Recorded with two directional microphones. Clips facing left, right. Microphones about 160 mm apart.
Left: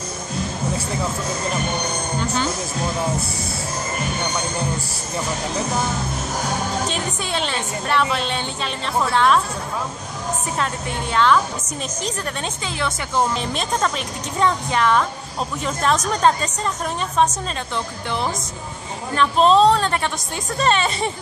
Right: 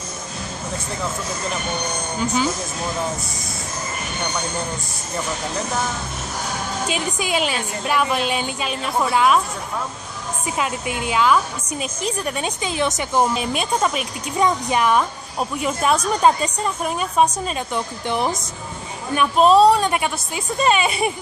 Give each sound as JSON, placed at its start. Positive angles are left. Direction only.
{"t": 2.1, "sound": "a woman's voice", "side_deg": -5}
{"t": 6.9, "sound": "a woman's voice", "side_deg": -10}
{"t": 10.6, "sound": "a woman's voice", "side_deg": -10}
{"t": 12.6, "sound": "a woman's voice", "side_deg": -20}